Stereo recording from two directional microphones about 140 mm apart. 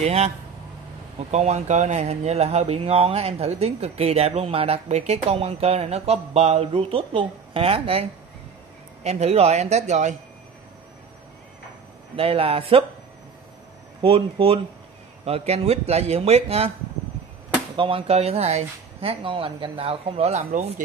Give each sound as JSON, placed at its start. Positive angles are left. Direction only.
{"t": 0.0, "sound": "speech", "side_deg": -50}
{"t": 1.3, "sound": "speech", "side_deg": -50}
{"t": 12.2, "sound": "a man's voice", "side_deg": -40}
{"t": 14.0, "sound": "a man's voice", "side_deg": -40}
{"t": 17.7, "sound": "speech", "side_deg": -40}